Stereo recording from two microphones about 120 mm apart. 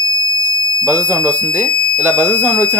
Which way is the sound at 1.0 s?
25° right (ahead or behind).